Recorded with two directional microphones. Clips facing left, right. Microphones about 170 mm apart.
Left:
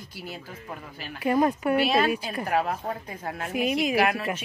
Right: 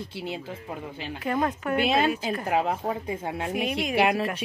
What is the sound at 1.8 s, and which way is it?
Speech, 25° right (ahead or behind).